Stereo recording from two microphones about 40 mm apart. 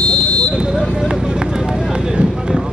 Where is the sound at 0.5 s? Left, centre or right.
Centre.